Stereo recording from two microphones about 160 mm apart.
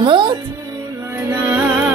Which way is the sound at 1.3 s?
15° right (ahead or behind).